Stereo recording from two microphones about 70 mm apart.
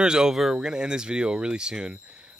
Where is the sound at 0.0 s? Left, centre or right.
Centre.